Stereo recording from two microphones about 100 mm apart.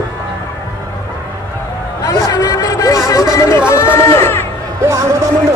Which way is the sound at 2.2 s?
35° left (ahead or behind).